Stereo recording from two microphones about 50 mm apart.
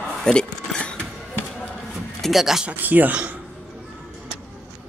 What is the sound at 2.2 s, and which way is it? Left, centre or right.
Speech, centre.